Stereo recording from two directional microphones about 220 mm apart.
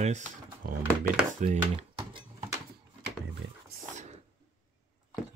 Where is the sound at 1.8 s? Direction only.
25° right (ahead or behind).